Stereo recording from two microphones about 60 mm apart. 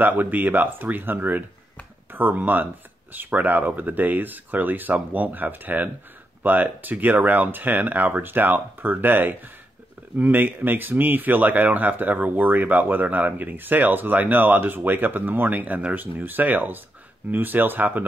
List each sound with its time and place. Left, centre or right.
0.0 s speech: right